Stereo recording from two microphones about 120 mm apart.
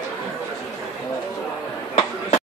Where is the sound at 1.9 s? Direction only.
60° left (ahead or behind).